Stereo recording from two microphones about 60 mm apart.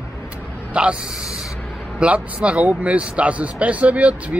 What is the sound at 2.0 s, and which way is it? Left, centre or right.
Speech, right.